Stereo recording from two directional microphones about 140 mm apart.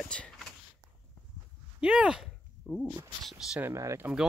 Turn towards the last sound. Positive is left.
turn(degrees=-20)  # may be behind; listen again after turning